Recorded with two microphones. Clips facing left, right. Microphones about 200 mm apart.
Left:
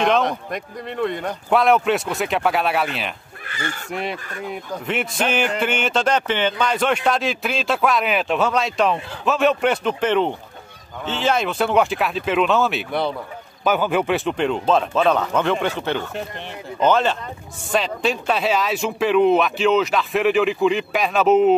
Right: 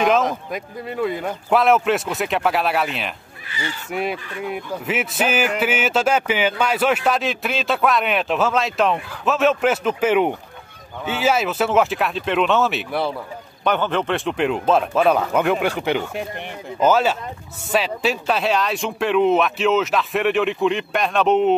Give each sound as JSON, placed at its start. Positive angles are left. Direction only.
{"t": 0.0, "sound": "a man's voice", "side_deg": 0}
{"t": 3.4, "sound": "speech", "side_deg": 50}
{"t": 3.9, "sound": "a man's voice", "side_deg": -5}